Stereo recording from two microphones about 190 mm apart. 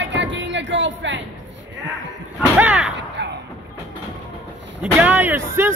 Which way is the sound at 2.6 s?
5° right (ahead or behind).